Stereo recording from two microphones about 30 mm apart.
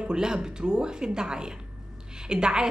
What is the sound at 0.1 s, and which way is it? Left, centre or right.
Speech, right.